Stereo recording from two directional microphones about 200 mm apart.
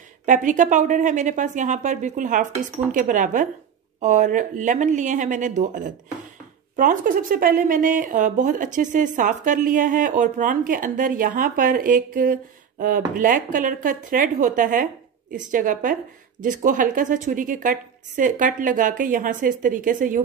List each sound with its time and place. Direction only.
0.2 s speech: 40° right (ahead or behind)